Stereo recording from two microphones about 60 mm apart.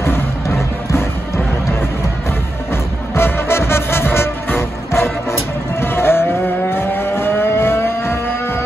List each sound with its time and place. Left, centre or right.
0.0 s music: left
3.2 s music: left
5.8 s vehicle: left